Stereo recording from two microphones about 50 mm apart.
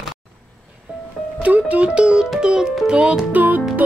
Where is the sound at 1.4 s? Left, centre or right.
Right.